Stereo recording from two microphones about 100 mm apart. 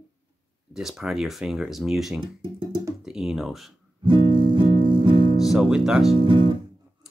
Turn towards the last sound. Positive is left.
turn(degrees=-55)  # may be behind; listen again after turning